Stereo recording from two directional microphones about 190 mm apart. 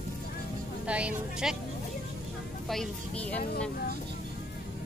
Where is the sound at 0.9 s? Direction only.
5° right (ahead or behind).